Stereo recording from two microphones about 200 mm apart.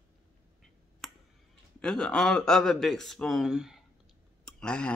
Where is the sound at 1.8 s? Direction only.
5° left (ahead or behind).